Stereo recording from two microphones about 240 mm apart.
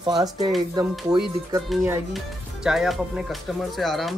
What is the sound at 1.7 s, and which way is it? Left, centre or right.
Speech, centre.